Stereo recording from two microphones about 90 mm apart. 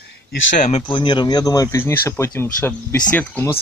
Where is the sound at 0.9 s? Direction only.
60° left (ahead or behind); by 1.7 s 45° left (ahead or behind).